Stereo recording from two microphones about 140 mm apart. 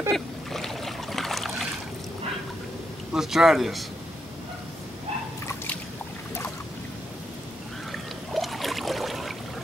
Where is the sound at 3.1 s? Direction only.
5° right (ahead or behind).